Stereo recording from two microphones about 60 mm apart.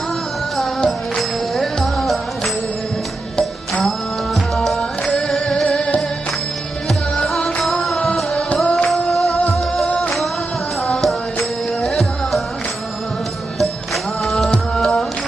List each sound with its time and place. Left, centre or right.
0.7 s music: centre
3.8 s music: centre
7.6 s music: centre
8.6 s music: left
8.9 s music: centre
10.9 s music: centre
14.2 s music: centre